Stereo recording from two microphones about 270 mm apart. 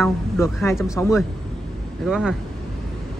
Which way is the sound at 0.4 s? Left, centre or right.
Centre.